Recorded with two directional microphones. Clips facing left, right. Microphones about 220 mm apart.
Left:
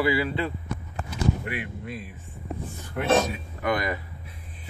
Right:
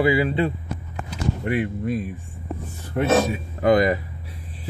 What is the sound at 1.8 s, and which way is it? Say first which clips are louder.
Speech: right 11 dB; 45° right (ahead or behind).